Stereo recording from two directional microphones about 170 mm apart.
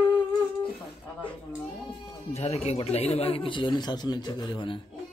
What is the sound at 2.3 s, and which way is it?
Speech, 40° left (ahead or behind).